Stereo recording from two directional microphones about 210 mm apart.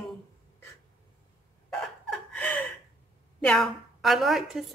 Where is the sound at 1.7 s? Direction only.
5° left (ahead or behind).